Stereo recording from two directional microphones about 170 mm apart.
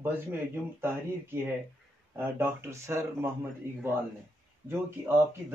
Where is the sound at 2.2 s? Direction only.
15° right (ahead or behind).